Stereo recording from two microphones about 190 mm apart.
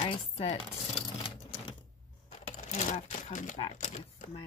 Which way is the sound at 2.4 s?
40° left (ahead or behind).